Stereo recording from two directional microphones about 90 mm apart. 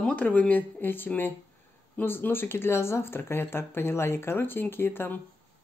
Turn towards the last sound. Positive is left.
turn(degrees=25)  # may be behind; listen again after turning